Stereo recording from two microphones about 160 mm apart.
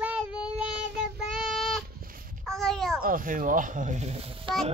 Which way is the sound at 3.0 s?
60° right (ahead or behind).